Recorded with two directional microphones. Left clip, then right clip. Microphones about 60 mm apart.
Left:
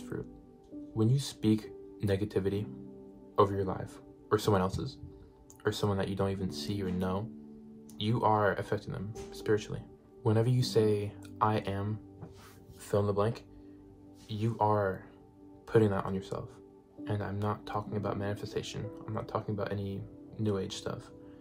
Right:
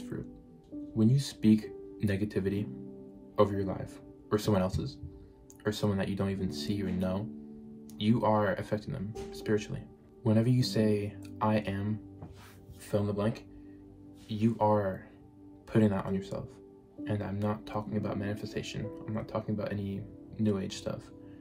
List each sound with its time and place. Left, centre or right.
0.9 s speech: centre
12.9 s speech: left
14.3 s speech: left